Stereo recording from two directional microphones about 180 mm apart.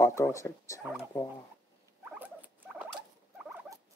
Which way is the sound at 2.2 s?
10° right (ahead or behind).